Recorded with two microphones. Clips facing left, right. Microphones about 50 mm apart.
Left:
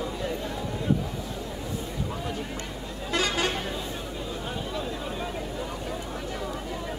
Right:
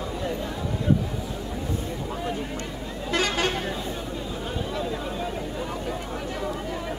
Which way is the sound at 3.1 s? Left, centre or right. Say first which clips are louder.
Right 2 dB; right.